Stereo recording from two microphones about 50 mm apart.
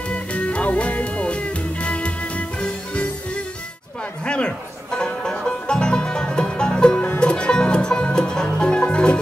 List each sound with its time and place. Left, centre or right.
0.1 s music: left